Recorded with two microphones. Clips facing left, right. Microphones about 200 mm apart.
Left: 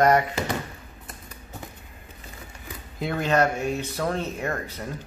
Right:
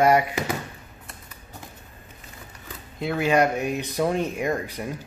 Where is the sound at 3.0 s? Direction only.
5° right (ahead or behind).